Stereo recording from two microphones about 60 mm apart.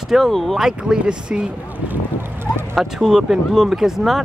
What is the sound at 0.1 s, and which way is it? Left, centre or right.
Speech, centre.